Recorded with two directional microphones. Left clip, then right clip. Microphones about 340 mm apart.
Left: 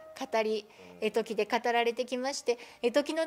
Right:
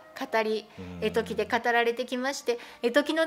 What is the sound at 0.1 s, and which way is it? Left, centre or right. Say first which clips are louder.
A woman's voice: right 3 dB; left.